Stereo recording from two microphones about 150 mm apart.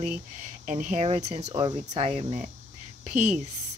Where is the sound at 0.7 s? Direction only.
55° right (ahead or behind).